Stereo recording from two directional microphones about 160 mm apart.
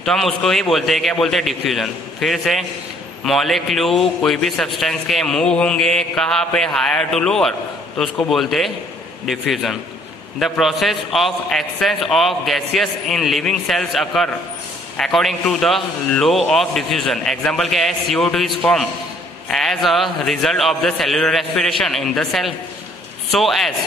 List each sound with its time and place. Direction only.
0.0 s a man's voice: 5° left (ahead or behind)